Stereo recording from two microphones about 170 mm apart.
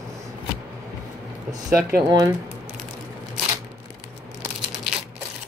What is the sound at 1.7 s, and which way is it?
Speech, 20° right (ahead or behind).